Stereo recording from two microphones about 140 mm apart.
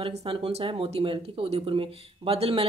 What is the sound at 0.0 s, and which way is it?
Speech, 45° right (ahead or behind).